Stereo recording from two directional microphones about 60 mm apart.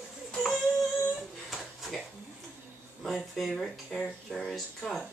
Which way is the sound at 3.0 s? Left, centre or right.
Centre.